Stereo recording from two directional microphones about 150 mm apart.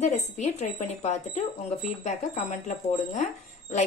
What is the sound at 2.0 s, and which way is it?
Speech, 55° left (ahead or behind).